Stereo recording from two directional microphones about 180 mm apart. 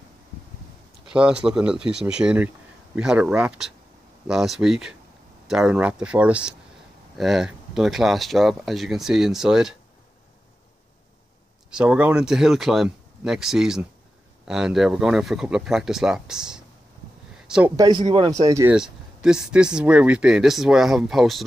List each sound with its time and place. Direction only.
1.0 s speech: 5° right (ahead or behind)
11.7 s speech: 5° right (ahead or behind)
17.7 s speech: 20° right (ahead or behind)
18.8 s speech: 5° right (ahead or behind)